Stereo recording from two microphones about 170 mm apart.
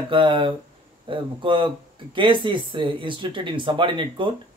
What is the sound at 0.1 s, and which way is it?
Speech, 30° right (ahead or behind).